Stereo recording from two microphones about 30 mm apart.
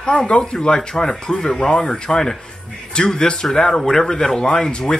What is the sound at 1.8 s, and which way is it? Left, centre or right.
Speech, left.